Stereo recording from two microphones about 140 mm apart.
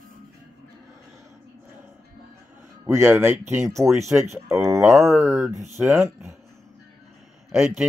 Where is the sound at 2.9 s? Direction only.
15° right (ahead or behind).